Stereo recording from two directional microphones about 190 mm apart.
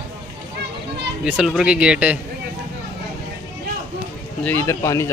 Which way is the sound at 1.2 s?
5° right (ahead or behind).